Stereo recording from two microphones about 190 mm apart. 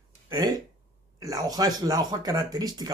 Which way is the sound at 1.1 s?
20° right (ahead or behind).